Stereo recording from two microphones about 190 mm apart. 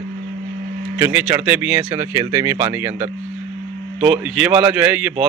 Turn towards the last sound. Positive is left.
turn(degrees=-10)  # may be behind; listen again after turning